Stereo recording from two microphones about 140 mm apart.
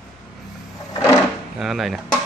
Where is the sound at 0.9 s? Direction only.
25° left (ahead or behind).